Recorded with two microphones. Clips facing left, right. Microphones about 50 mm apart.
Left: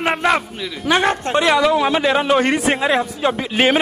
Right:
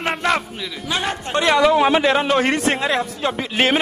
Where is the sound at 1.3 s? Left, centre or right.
Centre.